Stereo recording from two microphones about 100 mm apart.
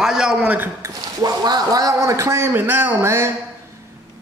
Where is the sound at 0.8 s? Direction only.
40° right (ahead or behind).